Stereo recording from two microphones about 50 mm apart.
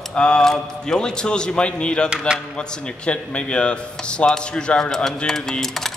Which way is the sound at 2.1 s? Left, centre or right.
Centre.